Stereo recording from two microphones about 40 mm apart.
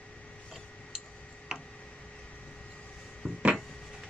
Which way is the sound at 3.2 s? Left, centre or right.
Centre.